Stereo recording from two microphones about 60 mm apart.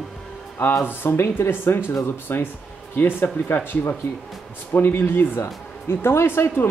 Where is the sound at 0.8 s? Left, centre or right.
Left.